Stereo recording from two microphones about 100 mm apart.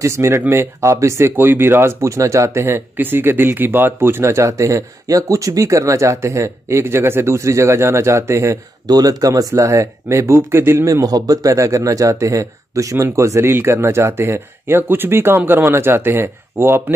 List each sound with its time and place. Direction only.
0.0 s speech: 30° right (ahead or behind)
8.8 s speech: 40° right (ahead or behind); by 16.8 s 25° right (ahead or behind)